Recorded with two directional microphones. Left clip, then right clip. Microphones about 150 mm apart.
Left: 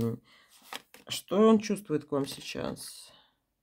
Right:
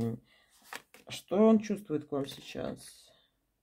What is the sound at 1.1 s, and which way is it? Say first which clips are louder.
Speech: left 2 dB; 45° left (ahead or behind).